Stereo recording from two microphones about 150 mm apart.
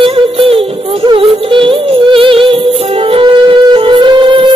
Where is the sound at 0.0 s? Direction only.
40° right (ahead or behind).